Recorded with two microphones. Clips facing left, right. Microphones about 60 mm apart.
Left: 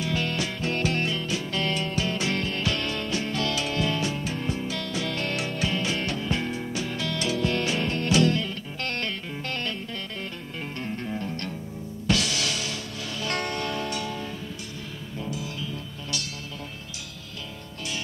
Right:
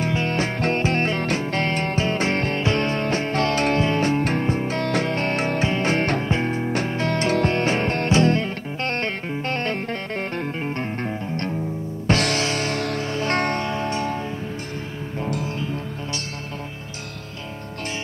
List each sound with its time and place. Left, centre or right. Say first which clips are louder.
0.1 s music: right 5 dB; right
6.2 s music: right 6 dB; right
9.8 s music: right 8 dB; right
10.6 s music: right 6 dB; right
13.6 s music: right 5 dB; right
15.1 s music: right 7 dB; right
15.6 s music: right 7 dB; right